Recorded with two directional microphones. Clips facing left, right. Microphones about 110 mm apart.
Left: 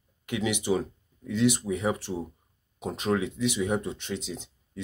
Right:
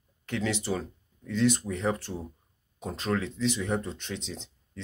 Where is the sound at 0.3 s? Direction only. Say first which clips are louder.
Left 3 dB; 15° left (ahead or behind).